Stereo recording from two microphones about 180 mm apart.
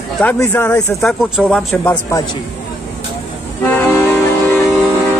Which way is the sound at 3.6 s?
10° left (ahead or behind).